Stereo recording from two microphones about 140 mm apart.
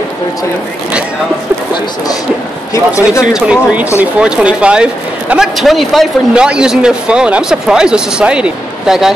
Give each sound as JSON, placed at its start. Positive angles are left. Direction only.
{"t": 2.7, "sound": "a man's voice", "side_deg": 20}
{"t": 3.3, "sound": "speech", "side_deg": -5}